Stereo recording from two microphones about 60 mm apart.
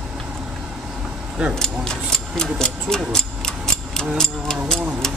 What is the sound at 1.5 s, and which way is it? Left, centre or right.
Speech, centre.